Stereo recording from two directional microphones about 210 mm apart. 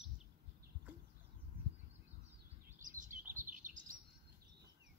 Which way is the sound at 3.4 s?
40° right (ahead or behind).